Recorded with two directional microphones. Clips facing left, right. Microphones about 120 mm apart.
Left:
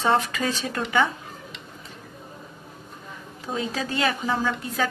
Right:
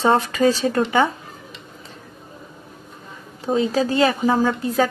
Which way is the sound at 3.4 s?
30° right (ahead or behind).